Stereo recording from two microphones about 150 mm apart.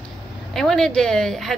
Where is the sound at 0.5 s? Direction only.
5° left (ahead or behind).